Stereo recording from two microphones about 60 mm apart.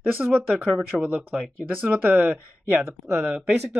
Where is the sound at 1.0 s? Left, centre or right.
Right.